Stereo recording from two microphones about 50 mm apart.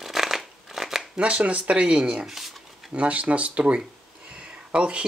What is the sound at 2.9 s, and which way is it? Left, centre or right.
Speech, right.